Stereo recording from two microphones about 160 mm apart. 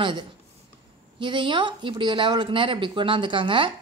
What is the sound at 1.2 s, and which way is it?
A woman's voice, 30° right (ahead or behind).